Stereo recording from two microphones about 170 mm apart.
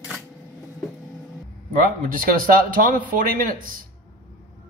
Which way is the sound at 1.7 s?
55° right (ahead or behind).